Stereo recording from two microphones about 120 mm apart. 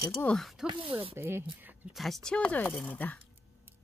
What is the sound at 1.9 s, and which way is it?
Speech, centre (ahead or behind).